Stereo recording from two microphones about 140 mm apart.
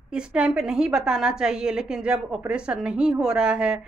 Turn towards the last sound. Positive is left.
turn(degrees=-5)  # may be behind; listen again after turning